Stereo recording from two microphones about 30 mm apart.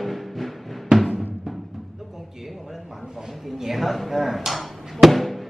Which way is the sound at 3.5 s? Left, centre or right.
Centre.